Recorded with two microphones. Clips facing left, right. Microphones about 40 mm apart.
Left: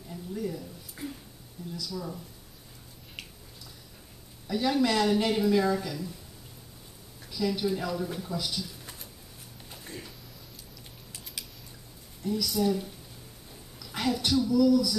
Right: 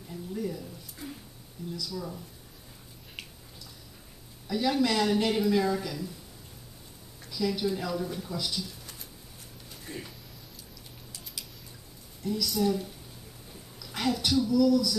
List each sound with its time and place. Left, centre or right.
0.1 s a sound: centre
1.0 s a sound: centre
1.7 s speech: centre
4.5 s speech: centre
7.3 s speech: centre
9.8 s music: centre
12.2 s speech: centre
13.8 s speech: centre